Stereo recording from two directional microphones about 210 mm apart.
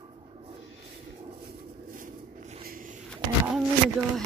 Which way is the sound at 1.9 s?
35° right (ahead or behind).